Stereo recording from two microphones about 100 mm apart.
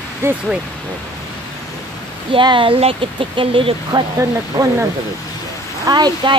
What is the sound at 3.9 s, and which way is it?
Speech, 45° right (ahead or behind).